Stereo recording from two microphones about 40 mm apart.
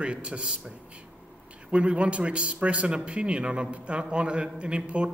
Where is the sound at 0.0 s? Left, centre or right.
Right.